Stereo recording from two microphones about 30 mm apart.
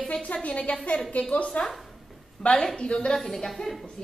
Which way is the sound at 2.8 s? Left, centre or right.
Left.